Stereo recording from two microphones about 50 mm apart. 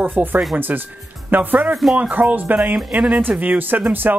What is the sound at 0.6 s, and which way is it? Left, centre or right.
Speech, right.